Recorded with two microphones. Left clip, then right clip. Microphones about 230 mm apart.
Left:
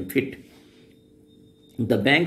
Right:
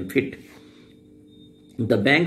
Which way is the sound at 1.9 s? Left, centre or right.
Centre.